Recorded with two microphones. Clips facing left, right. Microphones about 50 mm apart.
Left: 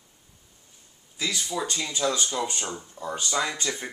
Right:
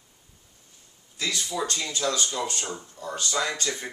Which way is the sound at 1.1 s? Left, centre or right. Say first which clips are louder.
Even; centre.